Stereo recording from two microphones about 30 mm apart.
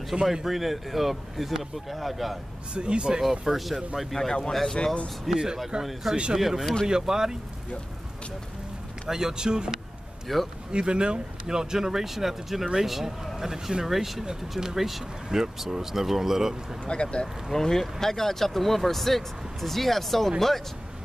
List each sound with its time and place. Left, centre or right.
0.1 s speech: centre
2.7 s speech: right
3.2 s speech: centre
4.3 s speech: centre
4.8 s speech: left
5.3 s speech: centre
6.3 s speech: centre
9.1 s speech: right
10.2 s speech: centre
10.7 s speech: right
13.8 s speech: centre
15.2 s speech: centre
16.8 s speech: left
17.5 s speech: centre